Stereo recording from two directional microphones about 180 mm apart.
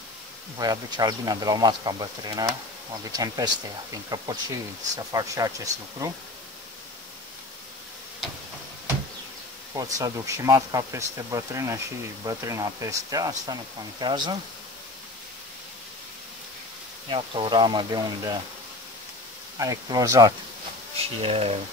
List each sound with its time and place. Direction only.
0.6 s speech: 20° right (ahead or behind)
9.8 s speech: 20° right (ahead or behind)
17.1 s speech: 30° right (ahead or behind)
19.6 s speech: 20° right (ahead or behind)
21.0 s speech: 35° right (ahead or behind)